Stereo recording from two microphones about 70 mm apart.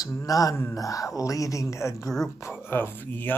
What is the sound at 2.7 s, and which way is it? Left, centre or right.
Speech, left.